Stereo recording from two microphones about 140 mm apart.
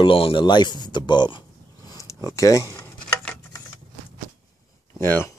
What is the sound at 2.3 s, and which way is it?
Speech, 20° left (ahead or behind).